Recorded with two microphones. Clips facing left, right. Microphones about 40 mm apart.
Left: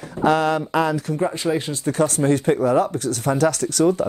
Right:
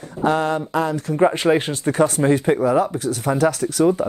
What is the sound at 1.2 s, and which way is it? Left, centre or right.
Speech, right.